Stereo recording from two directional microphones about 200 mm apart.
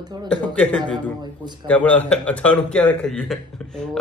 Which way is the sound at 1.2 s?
20° right (ahead or behind).